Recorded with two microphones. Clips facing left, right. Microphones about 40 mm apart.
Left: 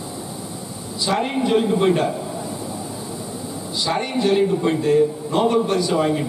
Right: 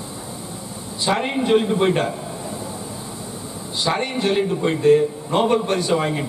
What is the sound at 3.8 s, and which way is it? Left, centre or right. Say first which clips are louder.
A man's voice: even; centre.